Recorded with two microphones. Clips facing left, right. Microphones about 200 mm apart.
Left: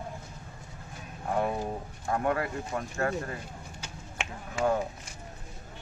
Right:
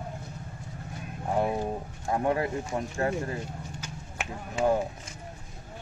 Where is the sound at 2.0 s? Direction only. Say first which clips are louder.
Right 2 dB; 20° right (ahead or behind).